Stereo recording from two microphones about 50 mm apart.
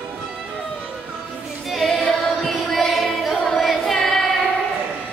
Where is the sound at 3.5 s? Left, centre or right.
Centre.